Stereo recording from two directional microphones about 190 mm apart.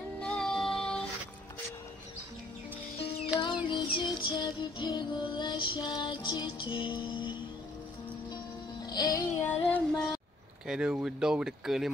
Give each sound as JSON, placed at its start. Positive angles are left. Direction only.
{"t": 0.2, "sound": "music", "side_deg": 5}
{"t": 3.3, "sound": "music", "side_deg": 25}
{"t": 8.8, "sound": "music", "side_deg": 20}
{"t": 10.7, "sound": "speech", "side_deg": -5}